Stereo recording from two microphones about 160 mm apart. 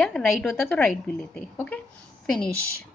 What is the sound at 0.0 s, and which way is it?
A woman's voice, centre (ahead or behind).